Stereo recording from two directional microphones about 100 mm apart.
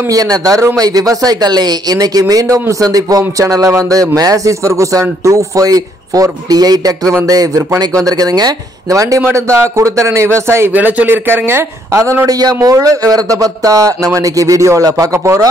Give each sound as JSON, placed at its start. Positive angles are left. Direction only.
{"t": 0.1, "sound": "speech", "side_deg": -35}